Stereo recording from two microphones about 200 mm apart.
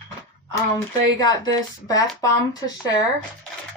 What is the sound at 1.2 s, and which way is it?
Speech, 20° left (ahead or behind).